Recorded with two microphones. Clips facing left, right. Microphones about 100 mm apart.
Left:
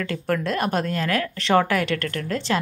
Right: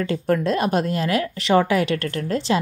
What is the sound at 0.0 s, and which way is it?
Speech, 20° right (ahead or behind).